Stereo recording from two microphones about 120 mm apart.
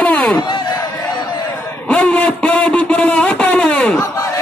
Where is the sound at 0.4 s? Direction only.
40° left (ahead or behind).